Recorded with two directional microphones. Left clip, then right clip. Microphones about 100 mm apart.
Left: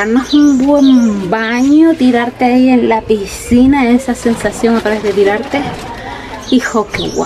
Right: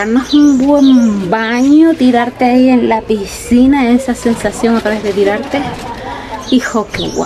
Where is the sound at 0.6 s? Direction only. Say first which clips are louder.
Even; 15° right (ahead or behind); by 4.2 s 5° left (ahead or behind).